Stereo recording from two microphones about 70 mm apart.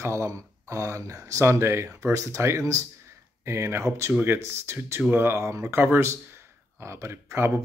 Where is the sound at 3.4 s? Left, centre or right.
Right.